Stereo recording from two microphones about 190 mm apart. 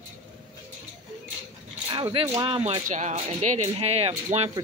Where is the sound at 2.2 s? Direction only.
20° right (ahead or behind).